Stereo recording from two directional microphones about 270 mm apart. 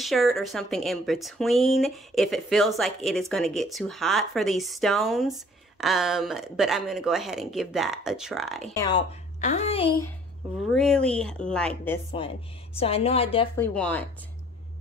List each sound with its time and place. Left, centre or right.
0.0 s speech: centre
8.7 s speech: centre
9.4 s a woman's voice: left
10.7 s speech: centre
12.7 s a woman's voice: left
13.6 s speech: centre